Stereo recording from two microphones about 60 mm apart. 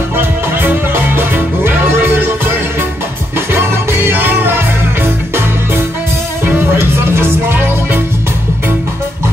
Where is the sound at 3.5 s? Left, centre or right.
Right.